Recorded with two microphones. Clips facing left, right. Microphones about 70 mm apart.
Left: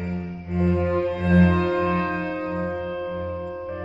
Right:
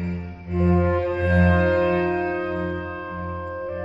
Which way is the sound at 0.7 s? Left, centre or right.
Right.